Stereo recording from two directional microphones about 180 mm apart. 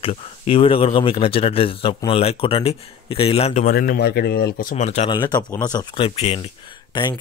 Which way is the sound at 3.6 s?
55° left (ahead or behind).